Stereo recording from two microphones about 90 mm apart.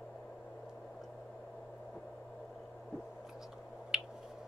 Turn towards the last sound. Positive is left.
turn(degrees=-5)  # may be behind; listen again after turning